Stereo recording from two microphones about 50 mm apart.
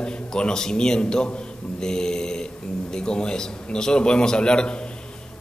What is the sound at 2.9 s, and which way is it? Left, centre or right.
A man's voice, centre.